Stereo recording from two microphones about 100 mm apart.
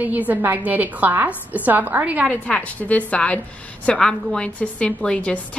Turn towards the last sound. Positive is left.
turn(degrees=10)  # may be behind; listen again after turning